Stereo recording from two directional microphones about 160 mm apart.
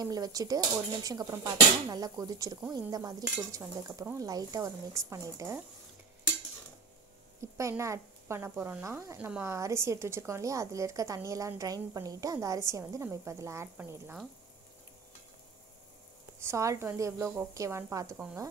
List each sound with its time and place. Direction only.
0.0 s a woman's voice: 25° right (ahead or behind)
7.5 s a woman's voice: 20° right (ahead or behind)
16.3 s a woman's voice: 15° right (ahead or behind)